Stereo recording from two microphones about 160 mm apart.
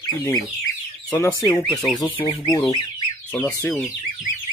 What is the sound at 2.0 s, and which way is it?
Speech, 30° left (ahead or behind).